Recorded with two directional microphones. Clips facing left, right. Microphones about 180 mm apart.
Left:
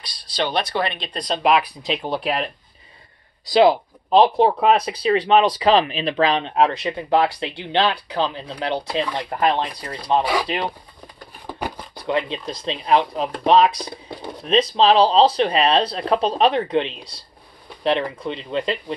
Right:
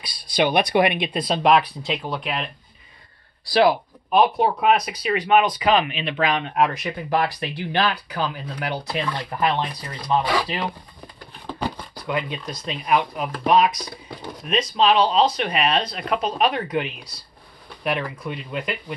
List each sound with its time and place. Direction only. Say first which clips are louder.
0.0 s speech: right 4 dB; 10° right (ahead or behind)
1.8 s speech: left 2 dB; 20° left (ahead or behind)
2.1 s speech: left 5 dB; 40° left (ahead or behind)
3.5 s speech: left 3 dB; 25° left (ahead or behind)
11.4 s a sound: right 1 dB; 15° left (ahead or behind)
12.0 s speech: left 4 dB; 25° left (ahead or behind)